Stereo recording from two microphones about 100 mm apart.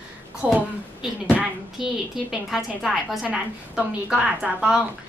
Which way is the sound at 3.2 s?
15° right (ahead or behind).